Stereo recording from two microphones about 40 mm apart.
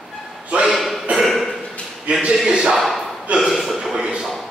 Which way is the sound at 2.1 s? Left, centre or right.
Right.